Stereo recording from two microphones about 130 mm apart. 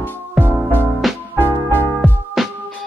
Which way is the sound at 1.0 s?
Centre (ahead or behind).